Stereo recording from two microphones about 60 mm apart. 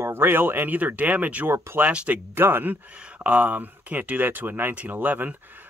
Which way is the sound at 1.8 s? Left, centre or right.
Right.